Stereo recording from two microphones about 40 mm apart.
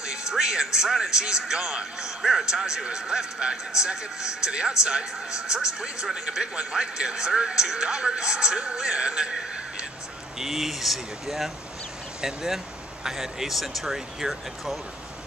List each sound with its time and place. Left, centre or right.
0.0 s a man's voice: centre
10.4 s speech: centre
12.2 s a man's voice: centre